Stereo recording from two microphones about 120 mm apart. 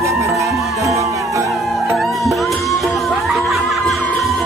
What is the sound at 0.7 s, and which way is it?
Music, 25° right (ahead or behind).